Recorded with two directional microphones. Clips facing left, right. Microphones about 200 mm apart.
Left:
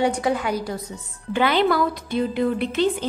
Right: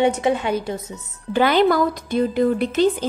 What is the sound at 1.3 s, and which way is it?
A woman's voice, 40° right (ahead or behind).